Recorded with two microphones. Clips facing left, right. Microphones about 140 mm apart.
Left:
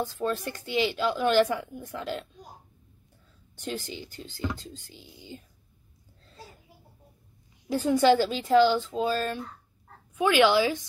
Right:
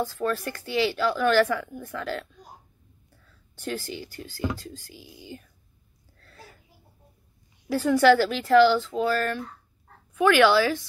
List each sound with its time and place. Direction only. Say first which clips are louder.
0.0 s a woman's voice: right 2 dB; 20° left (ahead or behind)
3.5 s a woman's voice: right 2 dB; 20° left (ahead or behind)
6.1 s a sound: left 1 dB; 20° left (ahead or behind)
7.6 s a woman's voice: right 3 dB; 15° left (ahead or behind)